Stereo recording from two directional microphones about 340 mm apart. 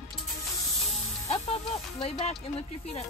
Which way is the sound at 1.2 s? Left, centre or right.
Centre.